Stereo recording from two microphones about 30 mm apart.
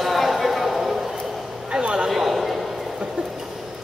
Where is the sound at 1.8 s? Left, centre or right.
Right.